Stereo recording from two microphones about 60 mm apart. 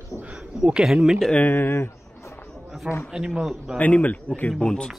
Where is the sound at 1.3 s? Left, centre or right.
Left.